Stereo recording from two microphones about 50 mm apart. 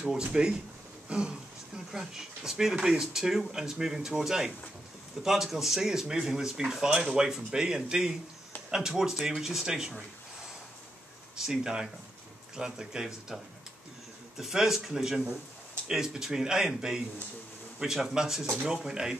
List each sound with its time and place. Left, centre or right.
0.1 s speech: centre
1.9 s speech: centre
11.3 s speech: centre